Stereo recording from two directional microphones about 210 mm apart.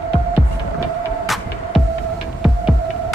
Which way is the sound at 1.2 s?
Centre (ahead or behind).